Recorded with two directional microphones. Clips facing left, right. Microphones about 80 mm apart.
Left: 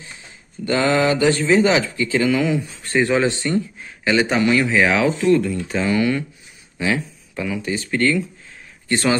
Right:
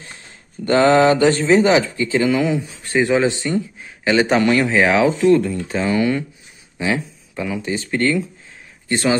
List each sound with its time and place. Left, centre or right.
0.7 s speech: right; by 3.6 s centre
4.0 s a man's voice: right
4.4 s speech: right
4.6 s speech: right